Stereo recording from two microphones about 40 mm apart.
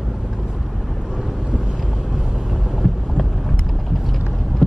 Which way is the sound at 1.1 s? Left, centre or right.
Centre.